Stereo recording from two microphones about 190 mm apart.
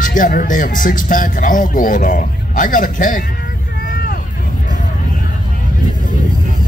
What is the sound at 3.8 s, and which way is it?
Vehicle, 50° left (ahead or behind).